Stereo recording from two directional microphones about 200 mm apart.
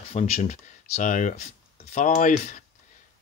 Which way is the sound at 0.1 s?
35° left (ahead or behind).